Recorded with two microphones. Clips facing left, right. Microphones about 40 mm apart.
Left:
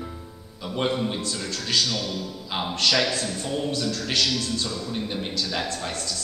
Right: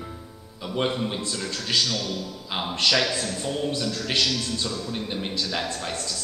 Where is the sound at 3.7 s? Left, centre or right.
Right.